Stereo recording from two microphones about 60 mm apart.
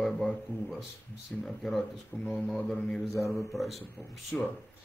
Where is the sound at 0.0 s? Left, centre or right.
Centre.